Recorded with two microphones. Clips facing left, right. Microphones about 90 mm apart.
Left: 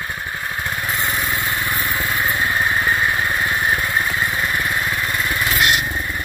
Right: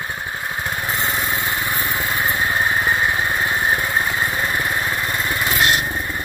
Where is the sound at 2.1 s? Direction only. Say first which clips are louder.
Even; 20° right (ahead or behind).